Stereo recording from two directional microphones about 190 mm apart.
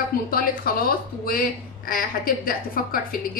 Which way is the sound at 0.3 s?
50° left (ahead or behind).